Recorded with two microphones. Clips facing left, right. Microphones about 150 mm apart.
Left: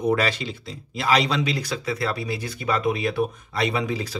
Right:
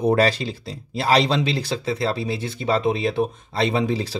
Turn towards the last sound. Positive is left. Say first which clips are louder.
# right 4 dB
turn(degrees=-30)  # may be behind; listen again after turning